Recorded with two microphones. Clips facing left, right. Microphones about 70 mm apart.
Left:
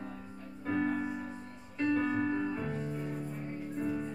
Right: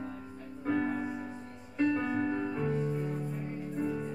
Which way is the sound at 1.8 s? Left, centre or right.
Centre.